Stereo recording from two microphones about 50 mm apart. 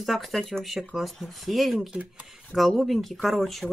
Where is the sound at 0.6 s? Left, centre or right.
Centre.